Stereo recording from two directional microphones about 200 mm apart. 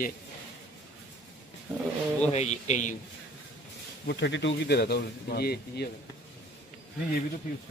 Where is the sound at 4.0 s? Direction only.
55° left (ahead or behind).